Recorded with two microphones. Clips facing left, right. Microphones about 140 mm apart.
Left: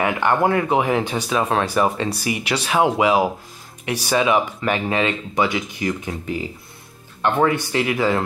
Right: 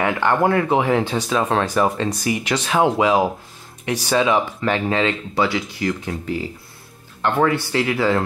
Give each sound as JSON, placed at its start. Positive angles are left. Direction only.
{"t": 0.4, "sound": "speech", "side_deg": 15}